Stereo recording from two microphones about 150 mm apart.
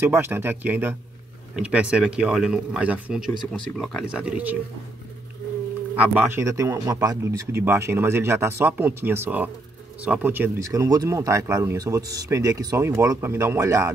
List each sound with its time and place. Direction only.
0.0 s speech: 15° right (ahead or behind)
5.9 s speech: 10° right (ahead or behind)